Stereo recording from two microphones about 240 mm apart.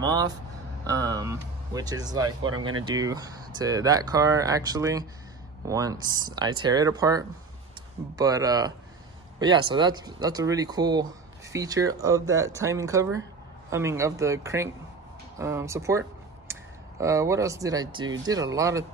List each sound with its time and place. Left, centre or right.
0.0 s speech: centre
2.2 s speech: right
2.8 s speech: centre
16.5 s a sound: centre
17.0 s speech: centre